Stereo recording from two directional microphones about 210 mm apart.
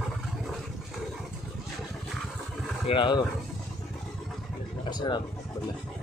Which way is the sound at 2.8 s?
25° left (ahead or behind).